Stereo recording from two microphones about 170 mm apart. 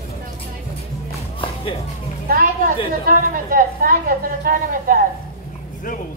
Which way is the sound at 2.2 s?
55° right (ahead or behind).